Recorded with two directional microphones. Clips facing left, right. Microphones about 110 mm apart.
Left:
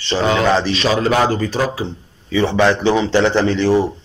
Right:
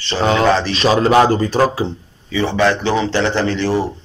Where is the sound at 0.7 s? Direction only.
35° right (ahead or behind).